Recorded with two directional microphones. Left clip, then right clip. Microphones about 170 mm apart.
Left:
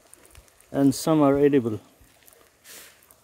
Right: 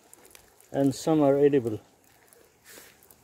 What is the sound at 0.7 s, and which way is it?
Speech, 35° left (ahead or behind).